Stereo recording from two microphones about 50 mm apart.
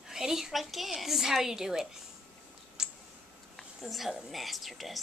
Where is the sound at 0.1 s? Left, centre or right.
Centre.